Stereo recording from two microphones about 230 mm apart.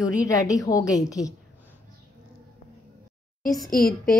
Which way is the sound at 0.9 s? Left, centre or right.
Centre.